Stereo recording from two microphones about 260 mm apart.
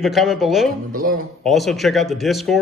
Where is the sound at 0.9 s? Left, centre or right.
Right.